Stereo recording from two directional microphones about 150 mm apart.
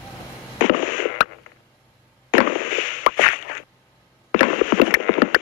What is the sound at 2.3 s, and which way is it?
Fireworks, 60° left (ahead or behind).